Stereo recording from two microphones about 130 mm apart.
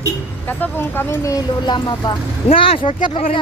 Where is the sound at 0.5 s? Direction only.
15° left (ahead or behind).